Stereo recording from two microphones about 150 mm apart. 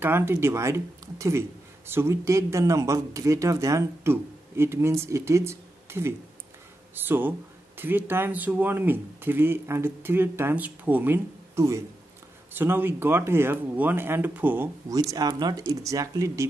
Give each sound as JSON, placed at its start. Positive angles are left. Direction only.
{"t": 0.0, "sound": "speech", "side_deg": -15}
{"t": 15.0, "sound": "speech", "side_deg": -25}